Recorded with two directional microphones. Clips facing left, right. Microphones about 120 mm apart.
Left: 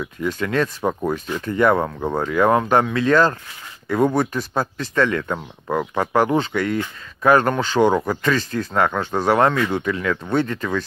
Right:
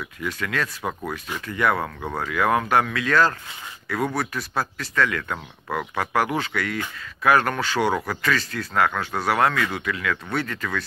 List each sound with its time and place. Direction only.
0.0 s speech: 20° left (ahead or behind)
0.4 s speech: 30° left (ahead or behind)